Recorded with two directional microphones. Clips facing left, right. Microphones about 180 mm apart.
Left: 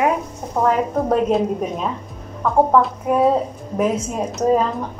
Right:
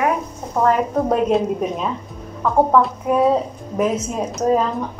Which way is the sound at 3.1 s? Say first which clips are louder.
Even; centre (ahead or behind).